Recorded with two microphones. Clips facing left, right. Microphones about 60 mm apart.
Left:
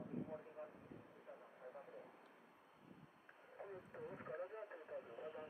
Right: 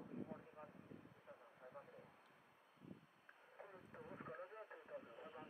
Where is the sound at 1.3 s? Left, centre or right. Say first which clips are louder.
Left 4 dB; centre.